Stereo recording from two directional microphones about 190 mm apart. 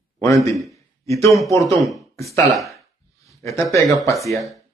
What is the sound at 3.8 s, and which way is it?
Speech, centre (ahead or behind).